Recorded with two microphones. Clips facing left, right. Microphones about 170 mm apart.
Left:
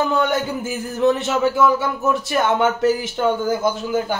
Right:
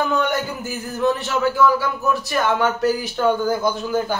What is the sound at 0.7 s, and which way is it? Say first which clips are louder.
Speech: left 3 dB; 20° left (ahead or behind).